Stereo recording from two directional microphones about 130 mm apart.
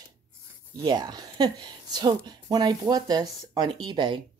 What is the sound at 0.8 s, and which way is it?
Speech, 30° right (ahead or behind).